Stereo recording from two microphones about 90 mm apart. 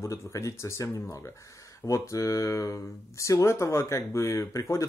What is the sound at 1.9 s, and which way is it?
Speech, 35° left (ahead or behind).